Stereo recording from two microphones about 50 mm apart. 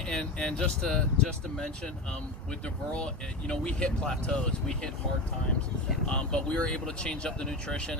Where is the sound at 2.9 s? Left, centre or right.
Centre.